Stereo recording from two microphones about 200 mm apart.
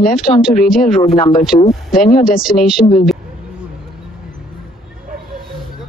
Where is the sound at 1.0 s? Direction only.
35° left (ahead or behind).